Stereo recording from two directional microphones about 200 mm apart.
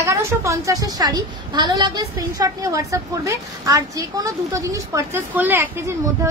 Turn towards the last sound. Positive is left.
turn(degrees=-10)  # may be behind; listen again after turning